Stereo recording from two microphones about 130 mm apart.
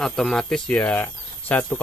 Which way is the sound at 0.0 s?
5° left (ahead or behind).